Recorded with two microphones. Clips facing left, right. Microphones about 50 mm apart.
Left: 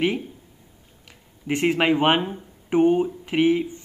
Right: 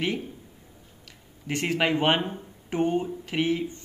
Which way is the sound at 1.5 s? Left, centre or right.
Centre.